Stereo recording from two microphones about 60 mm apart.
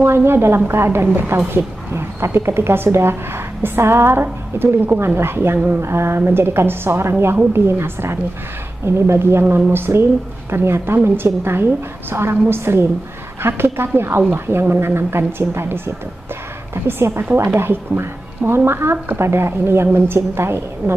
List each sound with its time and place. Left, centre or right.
0.0 s a woman's voice: right